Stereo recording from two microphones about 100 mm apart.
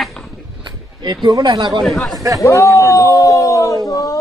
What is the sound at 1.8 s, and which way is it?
Speech, centre (ahead or behind).